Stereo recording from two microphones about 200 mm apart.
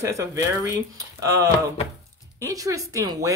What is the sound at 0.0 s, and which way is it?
Speech, 15° right (ahead or behind).